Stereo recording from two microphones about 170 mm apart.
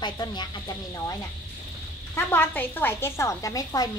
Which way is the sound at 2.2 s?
10° left (ahead or behind).